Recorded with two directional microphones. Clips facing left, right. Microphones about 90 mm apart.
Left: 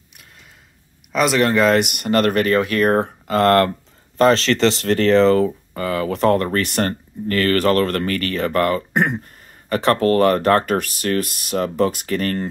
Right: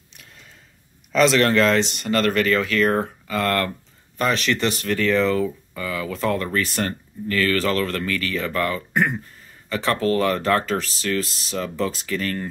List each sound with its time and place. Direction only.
1.1 s speech: 10° left (ahead or behind)
2.0 s speech: 40° left (ahead or behind)
3.3 s speech: 55° left (ahead or behind)
4.6 s speech: 90° left
4.8 s speech: 60° left (ahead or behind)